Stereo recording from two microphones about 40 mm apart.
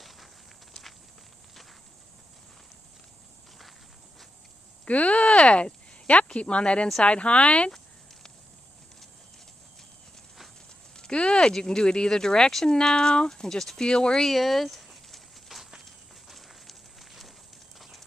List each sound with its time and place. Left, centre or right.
4.8 s speech: left
11.0 s speech: left
14.3 s a sound: centre
15.8 s walk: centre